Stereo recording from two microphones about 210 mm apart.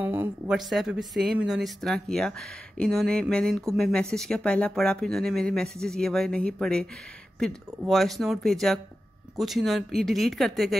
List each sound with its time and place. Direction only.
0.0 s speech: 10° right (ahead or behind)